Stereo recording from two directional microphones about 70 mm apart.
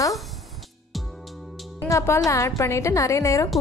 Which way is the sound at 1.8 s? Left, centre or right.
Left.